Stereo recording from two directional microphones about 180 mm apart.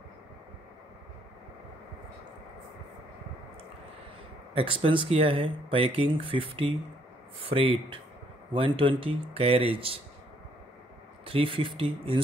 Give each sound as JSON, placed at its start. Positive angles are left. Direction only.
{"t": 4.6, "sound": "speech", "side_deg": -30}
{"t": 11.2, "sound": "speech", "side_deg": -30}